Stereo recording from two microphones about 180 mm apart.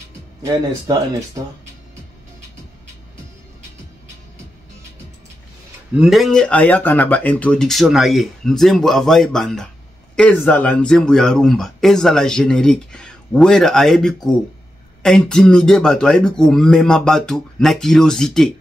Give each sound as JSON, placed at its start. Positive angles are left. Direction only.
{"t": 0.5, "sound": "speech", "side_deg": -20}
{"t": 5.9, "sound": "a man's voice", "side_deg": 0}